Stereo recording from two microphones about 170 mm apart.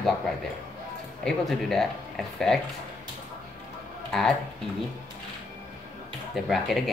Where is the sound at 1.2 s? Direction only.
Centre (ahead or behind).